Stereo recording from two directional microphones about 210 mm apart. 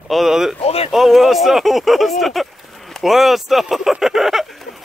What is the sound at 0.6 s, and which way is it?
Speech, 30° left (ahead or behind).